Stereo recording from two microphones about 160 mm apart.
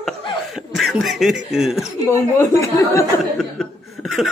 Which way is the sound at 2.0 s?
15° left (ahead or behind).